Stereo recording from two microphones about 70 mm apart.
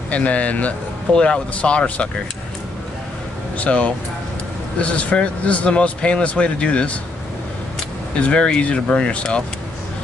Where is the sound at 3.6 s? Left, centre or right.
Centre.